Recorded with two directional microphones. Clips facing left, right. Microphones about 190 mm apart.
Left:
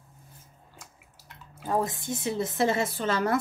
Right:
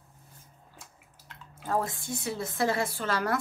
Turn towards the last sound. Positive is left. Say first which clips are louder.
# left 3 dB
turn(degrees=20)  # may be behind; listen again after turning